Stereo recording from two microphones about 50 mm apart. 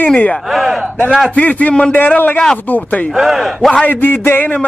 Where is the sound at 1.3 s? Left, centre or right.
Left.